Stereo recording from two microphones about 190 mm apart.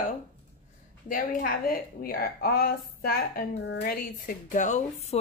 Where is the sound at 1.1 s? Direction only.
45° left (ahead or behind).